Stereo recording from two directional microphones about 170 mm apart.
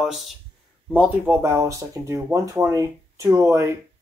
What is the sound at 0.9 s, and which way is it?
Speech, 10° right (ahead or behind).